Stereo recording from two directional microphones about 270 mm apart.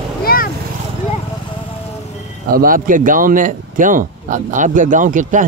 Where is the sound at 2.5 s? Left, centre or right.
Right.